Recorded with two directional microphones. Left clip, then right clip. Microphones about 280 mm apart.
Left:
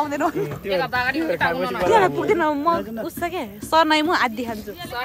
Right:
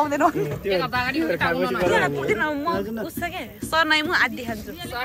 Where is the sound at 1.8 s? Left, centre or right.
Left.